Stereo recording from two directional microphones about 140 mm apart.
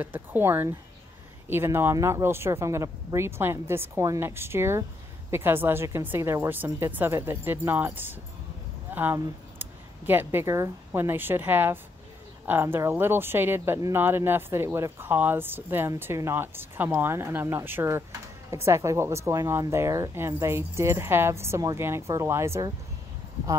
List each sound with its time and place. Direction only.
0.0 s speech: 15° right (ahead or behind)